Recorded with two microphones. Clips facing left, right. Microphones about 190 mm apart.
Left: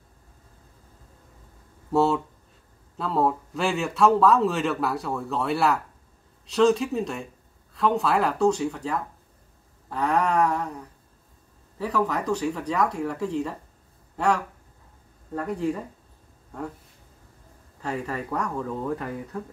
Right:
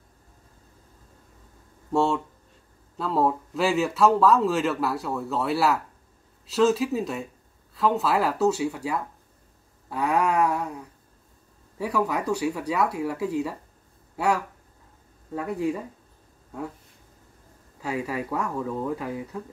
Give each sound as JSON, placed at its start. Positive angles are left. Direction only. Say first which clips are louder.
{"t": 1.9, "sound": "a man's voice", "louder": "left 2 dB", "side_deg": 5}
{"t": 17.7, "sound": "a man's voice", "louder": "right 1 dB", "side_deg": -5}